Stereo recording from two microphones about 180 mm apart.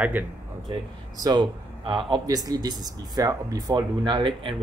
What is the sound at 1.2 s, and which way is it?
Speech, 25° right (ahead or behind).